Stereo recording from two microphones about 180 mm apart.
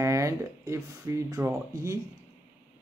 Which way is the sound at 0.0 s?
15° right (ahead or behind).